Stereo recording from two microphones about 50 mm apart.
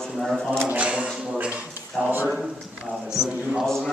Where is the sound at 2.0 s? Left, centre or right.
Centre.